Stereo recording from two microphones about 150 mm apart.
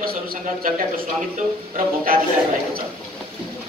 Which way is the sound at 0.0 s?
80° right.